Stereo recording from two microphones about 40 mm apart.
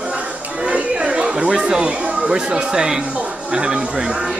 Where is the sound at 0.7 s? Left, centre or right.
Right.